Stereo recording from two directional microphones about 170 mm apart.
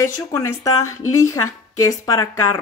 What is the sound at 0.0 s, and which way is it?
Speech, 15° left (ahead or behind).